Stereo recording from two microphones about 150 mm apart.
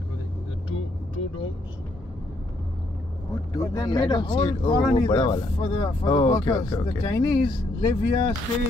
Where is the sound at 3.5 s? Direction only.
20° left (ahead or behind).